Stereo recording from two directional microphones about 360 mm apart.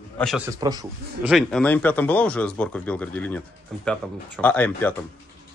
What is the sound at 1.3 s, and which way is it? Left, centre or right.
Speech, centre.